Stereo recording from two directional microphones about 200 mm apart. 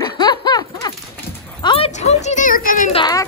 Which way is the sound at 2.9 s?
20° left (ahead or behind).